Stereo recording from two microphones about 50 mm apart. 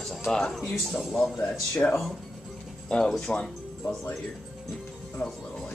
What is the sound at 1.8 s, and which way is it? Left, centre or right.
Speech, left.